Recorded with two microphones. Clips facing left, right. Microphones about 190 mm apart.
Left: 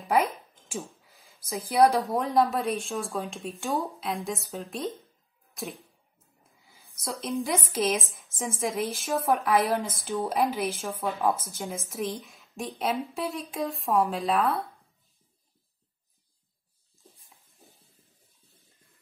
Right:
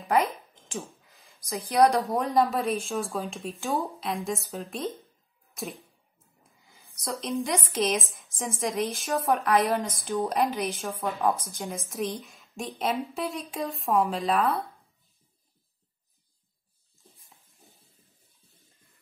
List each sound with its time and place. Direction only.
0.1 s a woman's voice: centre (ahead or behind)
6.6 s a woman's voice: centre (ahead or behind)